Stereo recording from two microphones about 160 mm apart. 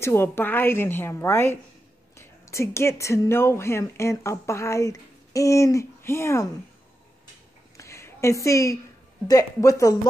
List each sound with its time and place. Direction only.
0.0 s speech: 15° left (ahead or behind)
7.7 s a sound: 20° left (ahead or behind)
9.3 s speech: 20° left (ahead or behind)